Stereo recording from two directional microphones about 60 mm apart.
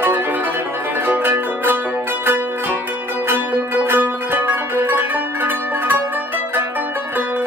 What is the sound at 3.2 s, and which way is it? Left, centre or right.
Music, right.